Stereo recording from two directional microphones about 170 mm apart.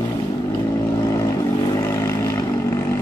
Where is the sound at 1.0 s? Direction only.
20° left (ahead or behind).